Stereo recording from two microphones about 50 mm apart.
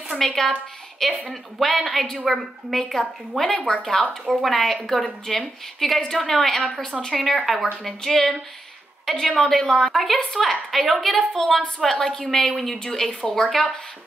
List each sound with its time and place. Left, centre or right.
0.1 s a woman's voice: centre